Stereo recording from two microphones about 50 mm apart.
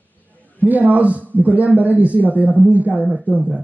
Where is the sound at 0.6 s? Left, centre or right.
Right.